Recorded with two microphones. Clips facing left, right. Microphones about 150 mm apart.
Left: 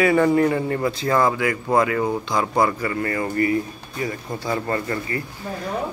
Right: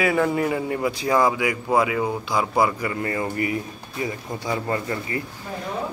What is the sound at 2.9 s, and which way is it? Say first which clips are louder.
A man's voice: left 2 dB; 20° right (ahead or behind).